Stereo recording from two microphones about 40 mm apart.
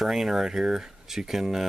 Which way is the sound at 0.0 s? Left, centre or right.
Centre.